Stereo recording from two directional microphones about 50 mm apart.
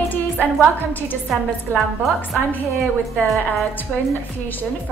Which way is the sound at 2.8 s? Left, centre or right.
Centre.